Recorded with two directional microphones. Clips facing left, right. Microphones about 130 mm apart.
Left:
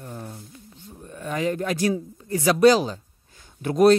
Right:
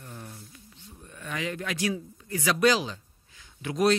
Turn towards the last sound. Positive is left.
turn(degrees=45)  # may be behind; listen again after turning